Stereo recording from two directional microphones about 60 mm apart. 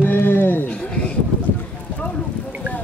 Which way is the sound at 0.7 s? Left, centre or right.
Centre.